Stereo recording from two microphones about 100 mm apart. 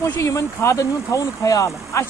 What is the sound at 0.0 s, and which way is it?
Speech, 30° left (ahead or behind).